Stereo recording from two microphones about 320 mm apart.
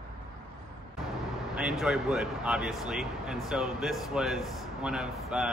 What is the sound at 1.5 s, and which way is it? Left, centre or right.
Speech, centre.